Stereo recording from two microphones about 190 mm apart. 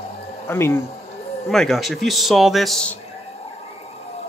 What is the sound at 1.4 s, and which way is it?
A man's voice, centre (ahead or behind).